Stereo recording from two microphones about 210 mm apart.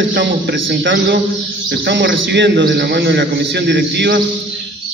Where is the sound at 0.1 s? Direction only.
50° right (ahead or behind).